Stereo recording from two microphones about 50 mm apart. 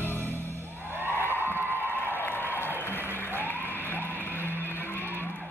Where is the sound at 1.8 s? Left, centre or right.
Left.